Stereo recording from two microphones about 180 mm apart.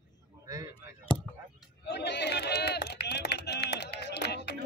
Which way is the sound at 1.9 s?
70° left (ahead or behind).